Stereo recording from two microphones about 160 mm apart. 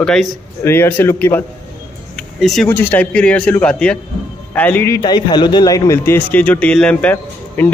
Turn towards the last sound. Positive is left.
turn(degrees=10)  # may be behind; listen again after turning